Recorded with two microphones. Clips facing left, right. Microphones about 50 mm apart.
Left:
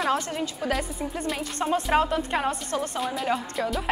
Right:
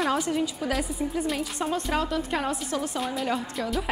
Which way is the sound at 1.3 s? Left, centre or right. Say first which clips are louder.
Left 2 dB; centre.